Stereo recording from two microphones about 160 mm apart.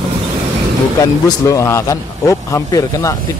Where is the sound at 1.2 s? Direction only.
20° left (ahead or behind).